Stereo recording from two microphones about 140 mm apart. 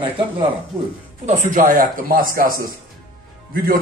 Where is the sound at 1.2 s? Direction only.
60° right (ahead or behind).